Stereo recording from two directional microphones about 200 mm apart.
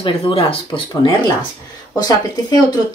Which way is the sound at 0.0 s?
25° left (ahead or behind).